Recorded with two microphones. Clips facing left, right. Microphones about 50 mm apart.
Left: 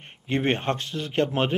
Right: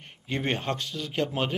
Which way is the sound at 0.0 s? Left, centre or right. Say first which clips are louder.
Left 5 dB; left.